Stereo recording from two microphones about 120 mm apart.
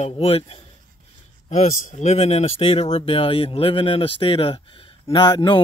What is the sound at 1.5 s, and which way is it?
Speech, 85° left.